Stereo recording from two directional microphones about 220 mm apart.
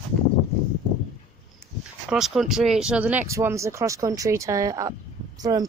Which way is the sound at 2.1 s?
Centre (ahead or behind).